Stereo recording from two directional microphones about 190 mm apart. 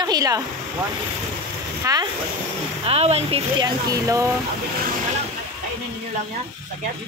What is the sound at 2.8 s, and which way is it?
Speech, 30° right (ahead or behind).